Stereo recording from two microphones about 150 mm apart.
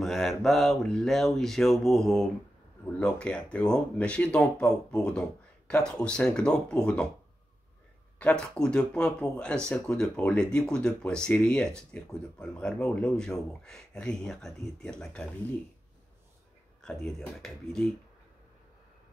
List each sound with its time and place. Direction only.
0.0 s speech: centre (ahead or behind)
8.2 s speech: 5° left (ahead or behind)
16.8 s speech: 5° left (ahead or behind)